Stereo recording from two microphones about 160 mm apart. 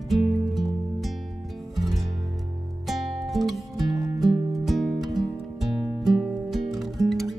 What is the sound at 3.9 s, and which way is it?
Music, 20° right (ahead or behind).